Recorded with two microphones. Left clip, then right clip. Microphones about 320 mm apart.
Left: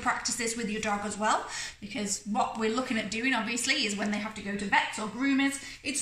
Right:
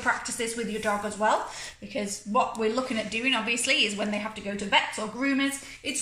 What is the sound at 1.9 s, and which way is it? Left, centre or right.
A woman's voice, left.